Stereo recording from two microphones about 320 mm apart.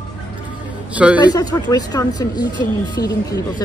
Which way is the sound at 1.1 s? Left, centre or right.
Centre.